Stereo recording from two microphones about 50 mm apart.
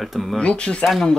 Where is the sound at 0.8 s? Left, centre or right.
Centre.